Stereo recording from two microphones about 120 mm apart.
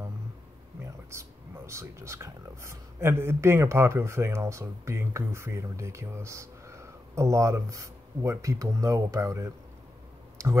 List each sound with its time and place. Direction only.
1.1 s speech: 20° right (ahead or behind)